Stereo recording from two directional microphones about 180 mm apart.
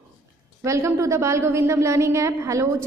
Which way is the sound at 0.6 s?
15° right (ahead or behind).